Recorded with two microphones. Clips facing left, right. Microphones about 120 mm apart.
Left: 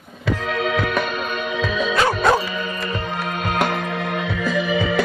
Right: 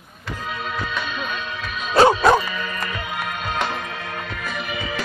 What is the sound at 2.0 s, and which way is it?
Music, 35° right (ahead or behind).